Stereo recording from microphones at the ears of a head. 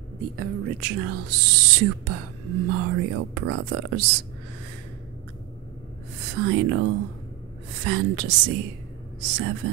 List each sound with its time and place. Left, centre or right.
0.2 s speech: right
6.2 s speech: right